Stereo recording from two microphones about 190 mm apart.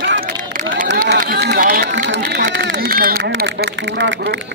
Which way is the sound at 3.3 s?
65° right (ahead or behind).